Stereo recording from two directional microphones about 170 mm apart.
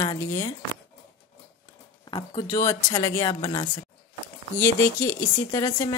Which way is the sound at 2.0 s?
25° left (ahead or behind).